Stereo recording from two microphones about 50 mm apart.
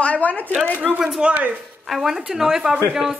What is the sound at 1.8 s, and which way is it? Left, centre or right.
Speech, centre.